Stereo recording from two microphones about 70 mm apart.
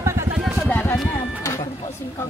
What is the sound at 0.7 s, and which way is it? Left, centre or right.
Music, left.